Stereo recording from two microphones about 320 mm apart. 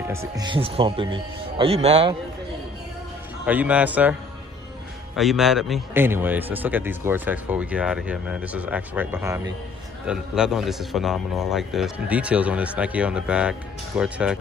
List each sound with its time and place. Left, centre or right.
0.1 s a man's voice: centre
3.4 s a man's voice: centre